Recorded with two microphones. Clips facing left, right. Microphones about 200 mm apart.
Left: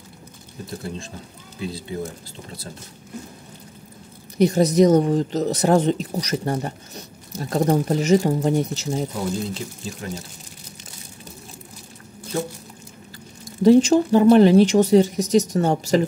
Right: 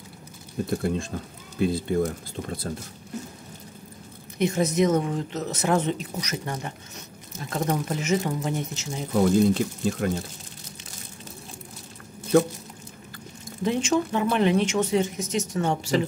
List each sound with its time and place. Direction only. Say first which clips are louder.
0.7 s speech: right 5 dB; 55° right (ahead or behind)
4.4 s a woman's voice: left 6 dB; 35° left (ahead or behind)
9.5 s speech: right 8 dB; 60° right (ahead or behind)
13.6 s a woman's voice: left 10 dB; 35° left (ahead or behind)